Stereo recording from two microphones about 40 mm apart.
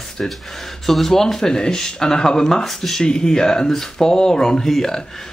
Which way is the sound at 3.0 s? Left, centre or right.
Centre.